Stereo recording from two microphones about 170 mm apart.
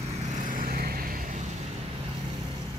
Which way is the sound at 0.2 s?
50° right (ahead or behind).